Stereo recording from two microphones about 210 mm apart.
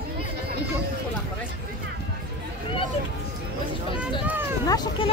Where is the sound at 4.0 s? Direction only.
5° right (ahead or behind).